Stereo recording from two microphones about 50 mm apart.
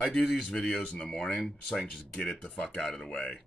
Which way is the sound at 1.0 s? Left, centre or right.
Centre.